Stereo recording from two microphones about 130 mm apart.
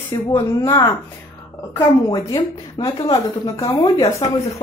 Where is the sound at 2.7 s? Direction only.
35° left (ahead or behind).